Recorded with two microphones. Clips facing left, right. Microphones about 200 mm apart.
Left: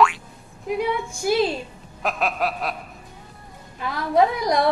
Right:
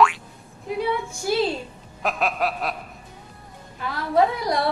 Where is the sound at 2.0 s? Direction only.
Centre (ahead or behind).